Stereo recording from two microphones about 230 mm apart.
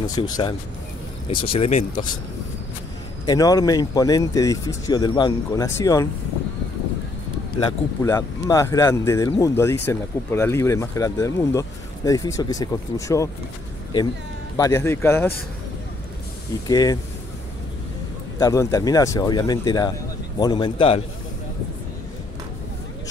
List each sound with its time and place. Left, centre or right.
0.0 s speech: centre
3.3 s speech: centre
8.0 s speech: centre
14.6 s speech: centre
16.6 s speech: centre
18.4 s speech: centre